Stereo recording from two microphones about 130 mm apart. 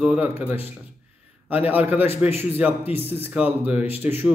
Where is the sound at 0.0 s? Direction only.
10° right (ahead or behind).